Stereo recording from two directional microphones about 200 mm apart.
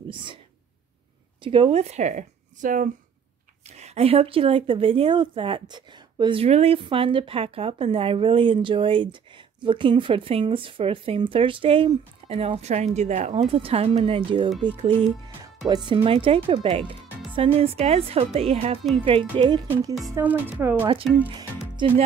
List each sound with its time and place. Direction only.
0.1 s speech: 25° right (ahead or behind)
1.4 s a woman's voice: 25° right (ahead or behind)
19.9 s speech: centre (ahead or behind)
21.3 s speech: 25° right (ahead or behind)